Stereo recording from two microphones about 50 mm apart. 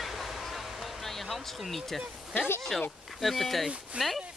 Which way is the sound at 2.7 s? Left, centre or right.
Centre.